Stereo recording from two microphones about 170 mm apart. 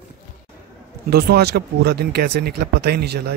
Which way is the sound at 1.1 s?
70° right (ahead or behind).